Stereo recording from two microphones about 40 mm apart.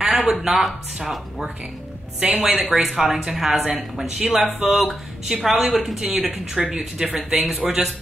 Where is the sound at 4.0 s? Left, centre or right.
Centre.